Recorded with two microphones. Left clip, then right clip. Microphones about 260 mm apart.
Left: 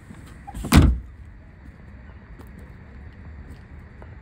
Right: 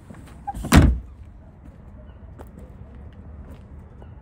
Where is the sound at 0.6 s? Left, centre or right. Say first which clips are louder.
Right 1 dB; centre.